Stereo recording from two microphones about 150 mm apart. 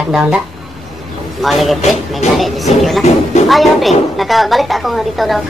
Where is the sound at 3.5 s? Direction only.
Centre (ahead or behind).